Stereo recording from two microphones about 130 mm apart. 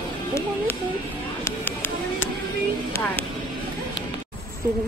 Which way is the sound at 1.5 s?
15° left (ahead or behind).